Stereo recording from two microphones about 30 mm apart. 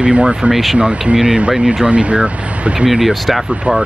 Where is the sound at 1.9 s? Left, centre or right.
Right.